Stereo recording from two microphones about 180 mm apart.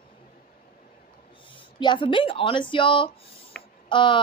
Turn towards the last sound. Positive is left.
turn(degrees=25)  # may be behind; listen again after turning